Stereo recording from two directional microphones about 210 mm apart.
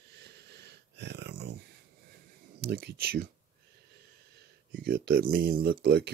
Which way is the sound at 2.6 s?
50° right (ahead or behind).